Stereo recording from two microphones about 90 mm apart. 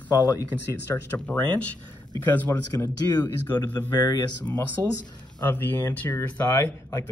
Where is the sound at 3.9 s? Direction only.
50° left (ahead or behind).